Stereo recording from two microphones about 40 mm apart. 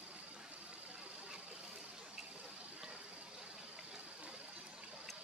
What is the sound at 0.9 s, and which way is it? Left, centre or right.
Water, right.